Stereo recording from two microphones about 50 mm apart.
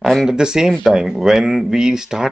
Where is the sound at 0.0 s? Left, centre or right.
Centre.